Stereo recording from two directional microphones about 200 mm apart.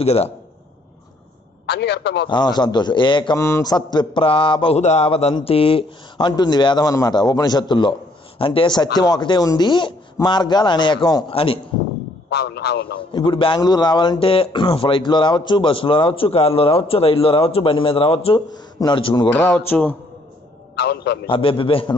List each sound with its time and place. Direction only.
0.0 s a man's voice: 30° left (ahead or behind)
1.7 s a man's voice: 55° left (ahead or behind)
2.2 s a man's voice: 20° left (ahead or behind)
12.3 s a man's voice: 55° left (ahead or behind)
13.1 s a man's voice: 25° left (ahead or behind)
19.2 s a sound: 10° left (ahead or behind)
20.7 s a man's voice: 60° left (ahead or behind)
21.3 s a man's voice: 25° left (ahead or behind)